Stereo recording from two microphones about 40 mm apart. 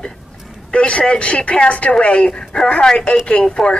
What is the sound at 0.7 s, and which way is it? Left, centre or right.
A woman's voice, left.